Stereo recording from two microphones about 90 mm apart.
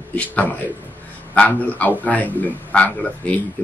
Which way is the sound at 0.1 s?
15° left (ahead or behind).